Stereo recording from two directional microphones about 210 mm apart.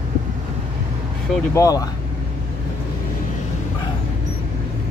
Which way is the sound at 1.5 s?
15° left (ahead or behind).